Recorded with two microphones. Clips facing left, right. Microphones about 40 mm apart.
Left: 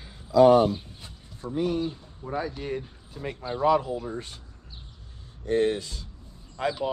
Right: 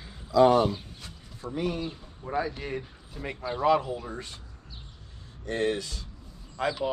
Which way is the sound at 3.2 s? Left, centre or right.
Right.